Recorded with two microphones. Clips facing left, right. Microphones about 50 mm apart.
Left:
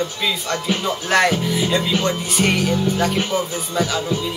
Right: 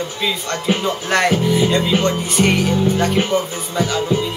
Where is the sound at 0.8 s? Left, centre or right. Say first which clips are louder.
Left 1 dB; centre.